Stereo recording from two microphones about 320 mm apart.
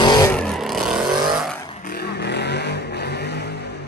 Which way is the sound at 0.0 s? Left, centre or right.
Centre.